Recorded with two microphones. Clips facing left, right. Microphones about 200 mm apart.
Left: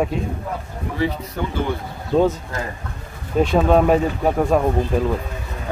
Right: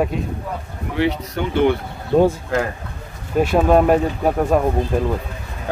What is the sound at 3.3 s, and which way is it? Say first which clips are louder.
Speech: right 1 dB; 5° right (ahead or behind).